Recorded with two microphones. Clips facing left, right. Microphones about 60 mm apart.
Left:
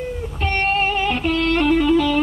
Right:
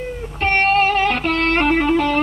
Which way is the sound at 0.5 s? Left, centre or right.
Right.